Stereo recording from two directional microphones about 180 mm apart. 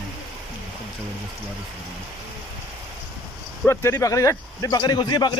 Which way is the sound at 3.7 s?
15° left (ahead or behind).